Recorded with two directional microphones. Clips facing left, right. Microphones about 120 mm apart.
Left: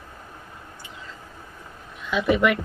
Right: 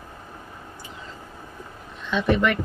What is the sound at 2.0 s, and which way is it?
Speech, 5° left (ahead or behind).